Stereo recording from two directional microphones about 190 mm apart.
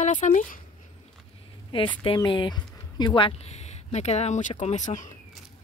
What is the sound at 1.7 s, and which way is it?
Speech, 25° left (ahead or behind).